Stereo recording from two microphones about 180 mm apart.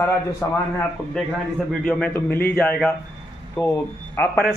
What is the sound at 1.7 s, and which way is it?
Speech, 5° left (ahead or behind).